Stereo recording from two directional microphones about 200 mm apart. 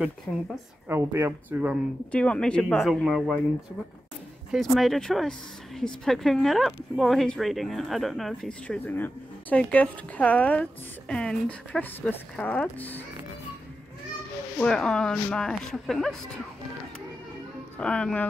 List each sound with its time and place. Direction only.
0.3 s speech: centre (ahead or behind)
0.8 s speech: 10° right (ahead or behind)
2.0 s speech: 5° left (ahead or behind)
4.5 s speech: centre (ahead or behind)
14.6 s speech: 5° left (ahead or behind)
17.7 s speech: 5° left (ahead or behind)